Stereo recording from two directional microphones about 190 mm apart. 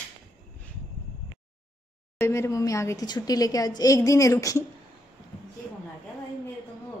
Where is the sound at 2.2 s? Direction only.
15° left (ahead or behind).